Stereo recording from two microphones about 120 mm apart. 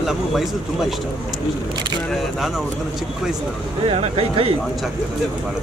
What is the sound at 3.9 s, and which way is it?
Speech, 55° right (ahead or behind).